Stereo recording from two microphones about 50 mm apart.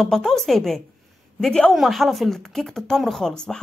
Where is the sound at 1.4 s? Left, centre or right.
Centre.